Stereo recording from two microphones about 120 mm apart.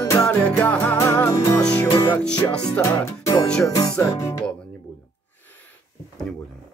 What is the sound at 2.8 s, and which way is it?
Music, 25° left (ahead or behind).